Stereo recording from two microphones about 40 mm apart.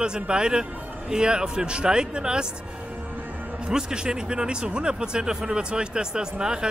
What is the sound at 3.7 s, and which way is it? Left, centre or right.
Speech, centre.